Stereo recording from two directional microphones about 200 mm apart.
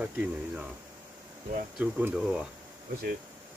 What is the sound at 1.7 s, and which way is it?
Speech, 5° right (ahead or behind).